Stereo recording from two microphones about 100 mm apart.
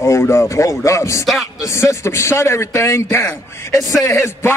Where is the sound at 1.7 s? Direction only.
30° left (ahead or behind).